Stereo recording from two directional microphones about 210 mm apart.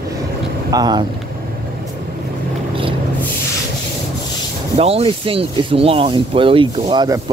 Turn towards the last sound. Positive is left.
turn(degrees=-20)  # may be behind; listen again after turning